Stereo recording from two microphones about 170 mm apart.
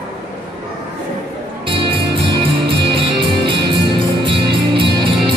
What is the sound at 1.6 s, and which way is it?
Music, 30° right (ahead or behind).